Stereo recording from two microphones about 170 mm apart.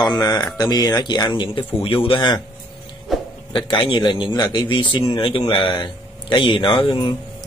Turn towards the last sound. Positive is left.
turn(degrees=30)  # may be behind; listen again after turning